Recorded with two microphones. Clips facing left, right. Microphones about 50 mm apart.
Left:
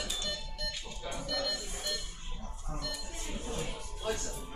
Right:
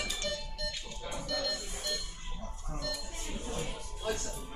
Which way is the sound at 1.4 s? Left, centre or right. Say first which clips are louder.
Even; centre.